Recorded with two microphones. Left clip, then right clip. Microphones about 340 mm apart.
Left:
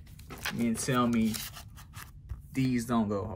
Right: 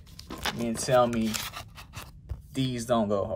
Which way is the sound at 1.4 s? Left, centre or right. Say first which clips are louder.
Right 7 dB; right.